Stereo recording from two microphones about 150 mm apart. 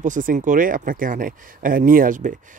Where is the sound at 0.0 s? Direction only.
60° right (ahead or behind).